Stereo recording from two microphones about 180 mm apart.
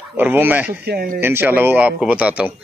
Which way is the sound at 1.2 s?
10° right (ahead or behind).